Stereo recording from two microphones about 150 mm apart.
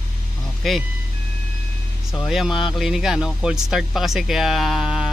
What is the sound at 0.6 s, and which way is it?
Speech, centre (ahead or behind).